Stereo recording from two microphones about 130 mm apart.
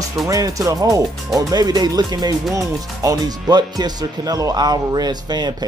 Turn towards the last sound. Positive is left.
turn(degrees=-30)  # may be behind; listen again after turning